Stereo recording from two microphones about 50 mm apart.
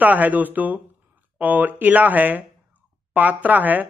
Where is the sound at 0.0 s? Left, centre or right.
Right.